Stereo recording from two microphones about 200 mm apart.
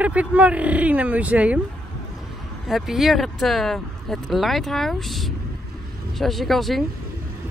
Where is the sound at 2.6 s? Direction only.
Centre (ahead or behind).